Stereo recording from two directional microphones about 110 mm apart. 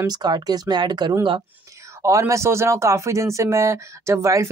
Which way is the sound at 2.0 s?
25° right (ahead or behind).